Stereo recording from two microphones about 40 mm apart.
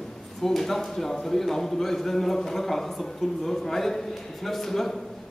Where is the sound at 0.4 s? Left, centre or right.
Centre.